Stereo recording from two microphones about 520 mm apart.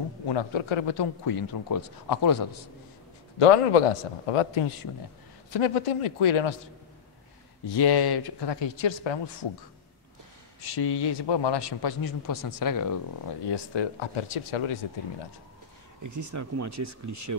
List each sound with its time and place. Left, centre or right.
0.3 s a man's voice: left
3.3 s a man's voice: left
7.6 s a man's voice: left
10.6 s a man's voice: left
13.5 s speech: left
16.0 s speech: right